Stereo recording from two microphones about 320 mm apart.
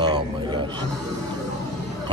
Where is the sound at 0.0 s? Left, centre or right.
Centre.